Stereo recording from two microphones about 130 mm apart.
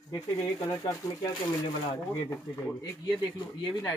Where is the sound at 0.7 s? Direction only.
25° left (ahead or behind).